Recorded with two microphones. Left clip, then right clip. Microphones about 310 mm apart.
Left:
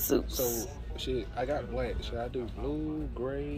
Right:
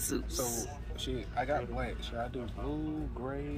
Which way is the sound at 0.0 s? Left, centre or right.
Centre.